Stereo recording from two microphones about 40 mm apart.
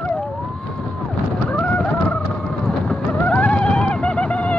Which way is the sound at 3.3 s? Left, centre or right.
Left.